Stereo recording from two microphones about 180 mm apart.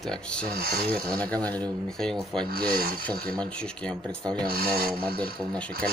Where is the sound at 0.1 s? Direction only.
5° left (ahead or behind).